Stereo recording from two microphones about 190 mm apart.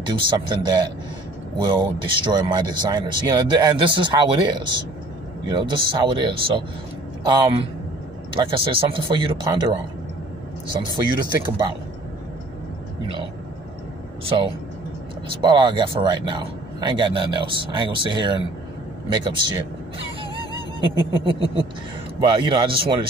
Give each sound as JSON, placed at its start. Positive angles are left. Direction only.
{"t": 0.0, "sound": "speech", "side_deg": -25}
{"t": 10.8, "sound": "speech", "side_deg": -25}
{"t": 15.4, "sound": "speech", "side_deg": -25}
{"t": 21.1, "sound": "speech", "side_deg": -30}